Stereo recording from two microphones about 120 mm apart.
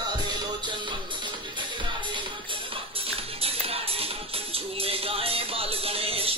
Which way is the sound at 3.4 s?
55° right (ahead or behind).